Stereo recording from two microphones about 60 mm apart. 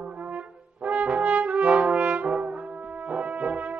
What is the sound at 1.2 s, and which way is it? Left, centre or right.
Brass instrument, right.